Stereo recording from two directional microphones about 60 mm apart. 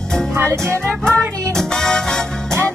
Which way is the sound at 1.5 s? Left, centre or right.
Centre.